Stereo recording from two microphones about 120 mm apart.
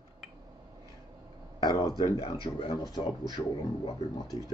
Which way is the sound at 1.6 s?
35° left (ahead or behind).